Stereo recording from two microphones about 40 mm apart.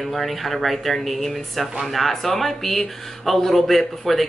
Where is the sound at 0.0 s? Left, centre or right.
Centre.